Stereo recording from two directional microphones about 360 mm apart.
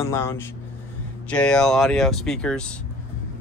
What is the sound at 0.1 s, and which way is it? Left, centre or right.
Speech, centre.